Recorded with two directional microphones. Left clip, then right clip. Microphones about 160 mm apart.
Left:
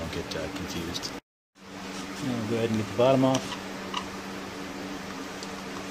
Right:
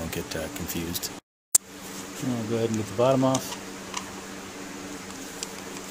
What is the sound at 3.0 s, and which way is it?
Speech, 45° right (ahead or behind).